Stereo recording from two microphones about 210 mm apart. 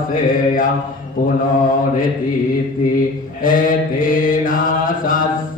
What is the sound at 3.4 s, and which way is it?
Mantra, 40° left (ahead or behind).